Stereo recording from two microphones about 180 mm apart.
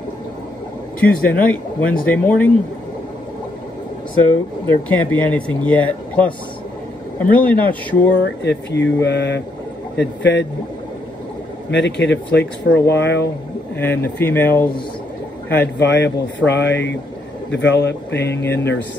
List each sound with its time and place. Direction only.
1.0 s speech: 10° left (ahead or behind)
4.2 s speech: 10° left (ahead or behind)
8.2 s speech: 70° left (ahead or behind)
11.7 s speech: 80° left
13.7 s speech: 10° left (ahead or behind)
15.8 s speech: 75° left (ahead or behind)
18.3 s speech: 15° left (ahead or behind)